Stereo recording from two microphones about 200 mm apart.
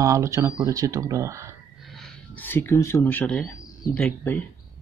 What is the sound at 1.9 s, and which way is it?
Speech, 5° left (ahead or behind).